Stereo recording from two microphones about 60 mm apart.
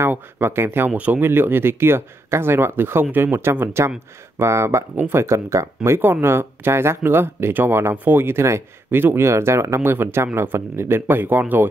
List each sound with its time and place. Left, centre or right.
0.0 s speech: right
0.9 s speech: right
1.2 s speech: right
5.9 s speech: right